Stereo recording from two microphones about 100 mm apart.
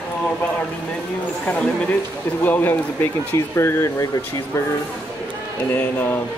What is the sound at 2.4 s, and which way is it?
Speech, 20° left (ahead or behind).